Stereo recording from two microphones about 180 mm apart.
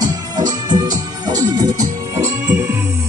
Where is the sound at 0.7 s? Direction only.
20° right (ahead or behind).